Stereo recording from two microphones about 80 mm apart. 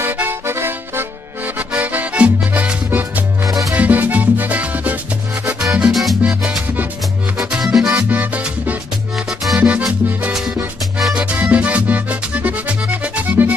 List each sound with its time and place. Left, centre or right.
0.0 s accordion: right
3.7 s music: right
5.5 s music: centre
6.2 s salsa music: centre
7.3 s music: centre
8.1 s music: centre
9.1 s music: centre
9.6 s music: centre
11.0 s music: centre
11.4 s music: centre